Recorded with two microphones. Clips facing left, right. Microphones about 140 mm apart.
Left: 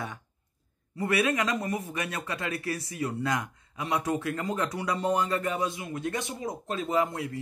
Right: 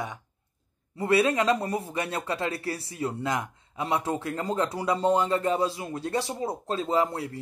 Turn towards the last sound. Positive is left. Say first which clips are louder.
# right 2 dB
turn(degrees=-30)  # may be behind; listen again after turning